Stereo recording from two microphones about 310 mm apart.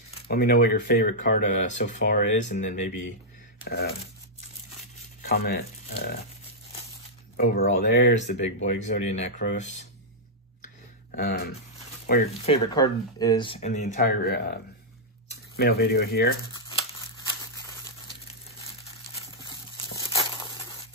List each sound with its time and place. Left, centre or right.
0.3 s speech: left
5.2 s speech: left
7.3 s speech: left
10.6 s a sound: left
12.1 s speech: centre
19.4 s crumpling: centre